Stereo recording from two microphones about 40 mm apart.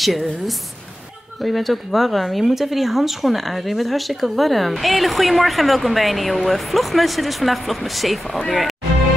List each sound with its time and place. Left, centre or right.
0.0 s speech: centre